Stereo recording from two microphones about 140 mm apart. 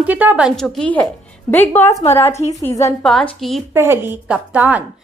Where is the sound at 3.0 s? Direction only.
Centre (ahead or behind).